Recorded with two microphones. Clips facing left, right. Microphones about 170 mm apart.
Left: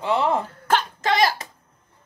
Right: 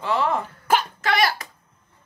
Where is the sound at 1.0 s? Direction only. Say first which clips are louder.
Left 2 dB; 25° left (ahead or behind).